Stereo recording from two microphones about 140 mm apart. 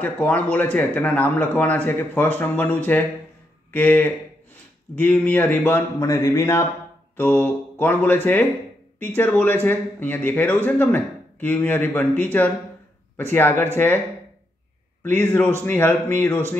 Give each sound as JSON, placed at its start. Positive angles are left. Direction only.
{"t": 0.0, "sound": "speech", "side_deg": 10}
{"t": 15.0, "sound": "speech", "side_deg": 15}